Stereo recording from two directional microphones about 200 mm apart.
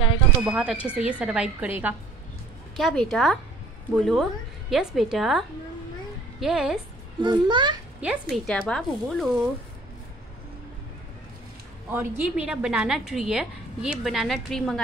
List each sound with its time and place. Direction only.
0.5 s a woman's voice: 5° right (ahead or behind)
6.4 s a woman's voice: centre (ahead or behind)
7.2 s a child's voice: 20° right (ahead or behind)
8.0 s a woman's voice: 5° right (ahead or behind)
11.9 s a woman's voice: 10° right (ahead or behind)